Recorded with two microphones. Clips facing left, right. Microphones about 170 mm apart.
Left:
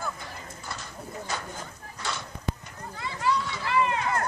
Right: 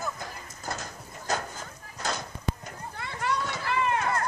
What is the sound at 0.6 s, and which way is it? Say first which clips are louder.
Horse: right 4 dB; 45° right (ahead or behind).